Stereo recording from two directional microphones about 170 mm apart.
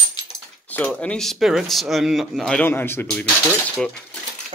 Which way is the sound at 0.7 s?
10° left (ahead or behind).